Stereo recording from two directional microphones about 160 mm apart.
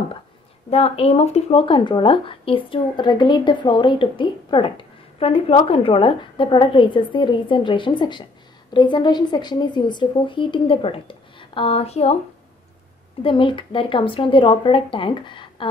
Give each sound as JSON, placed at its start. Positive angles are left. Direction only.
{"t": 0.7, "sound": "speech", "side_deg": 40}
{"t": 13.2, "sound": "speech", "side_deg": 35}